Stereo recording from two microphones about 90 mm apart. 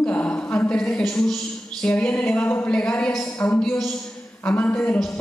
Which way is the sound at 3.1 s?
5° left (ahead or behind).